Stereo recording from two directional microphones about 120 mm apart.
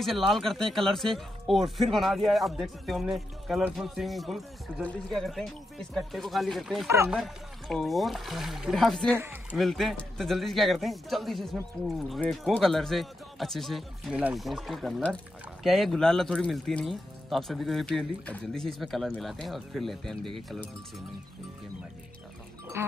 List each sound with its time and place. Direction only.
0.0 s speech: centre (ahead or behind)
9.1 s speech: 20° right (ahead or behind)
9.6 s speech: centre (ahead or behind)
22.8 s speech: 20° right (ahead or behind)